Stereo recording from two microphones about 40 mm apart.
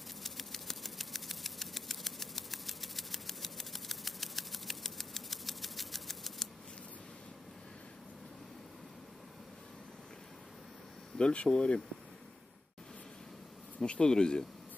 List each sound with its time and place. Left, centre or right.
0.2 s a sound: centre
11.1 s speech: left
13.7 s speech: left